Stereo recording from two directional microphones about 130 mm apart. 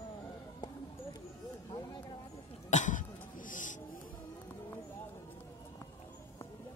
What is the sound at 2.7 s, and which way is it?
Cough, 75° left (ahead or behind).